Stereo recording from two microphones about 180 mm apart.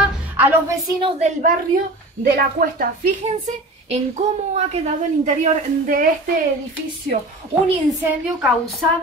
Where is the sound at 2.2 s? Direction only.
55° right (ahead or behind).